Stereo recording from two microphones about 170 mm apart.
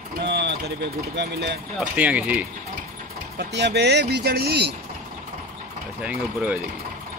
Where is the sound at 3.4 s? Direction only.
90° right; by 4.8 s 70° right (ahead or behind).